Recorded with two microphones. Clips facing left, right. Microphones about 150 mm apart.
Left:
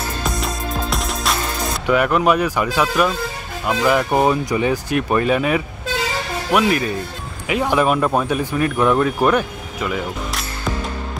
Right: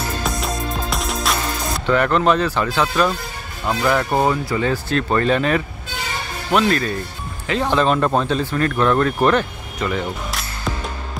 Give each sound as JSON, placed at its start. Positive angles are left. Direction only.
{"t": 0.2, "sound": "music", "side_deg": 0}
{"t": 1.9, "sound": "speech", "side_deg": 10}
{"t": 5.9, "sound": "vehicle", "side_deg": 90}
{"t": 6.5, "sound": "speech", "side_deg": 10}